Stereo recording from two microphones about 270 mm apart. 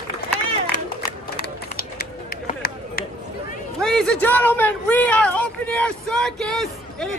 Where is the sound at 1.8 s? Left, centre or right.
Left.